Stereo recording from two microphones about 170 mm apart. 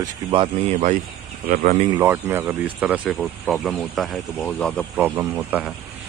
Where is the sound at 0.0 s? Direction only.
30° right (ahead or behind).